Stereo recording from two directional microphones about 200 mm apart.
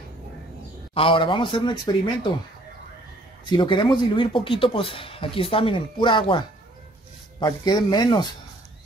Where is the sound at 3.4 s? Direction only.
25° left (ahead or behind).